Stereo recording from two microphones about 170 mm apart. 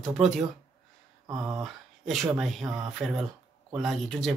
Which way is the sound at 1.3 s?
20° right (ahead or behind).